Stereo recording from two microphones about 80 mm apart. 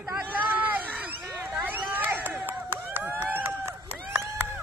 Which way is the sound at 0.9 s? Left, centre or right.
Right.